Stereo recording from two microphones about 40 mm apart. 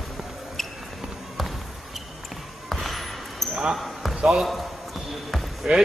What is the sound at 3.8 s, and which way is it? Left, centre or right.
Basketball bounce, centre.